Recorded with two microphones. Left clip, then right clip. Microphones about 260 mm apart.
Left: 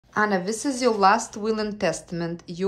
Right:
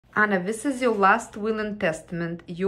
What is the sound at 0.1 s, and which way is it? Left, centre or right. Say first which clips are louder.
Speech: right 1 dB; centre.